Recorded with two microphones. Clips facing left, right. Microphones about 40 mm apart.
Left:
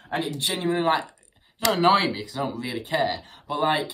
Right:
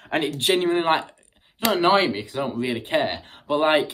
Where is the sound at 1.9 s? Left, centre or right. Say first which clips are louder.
Right 2 dB; right.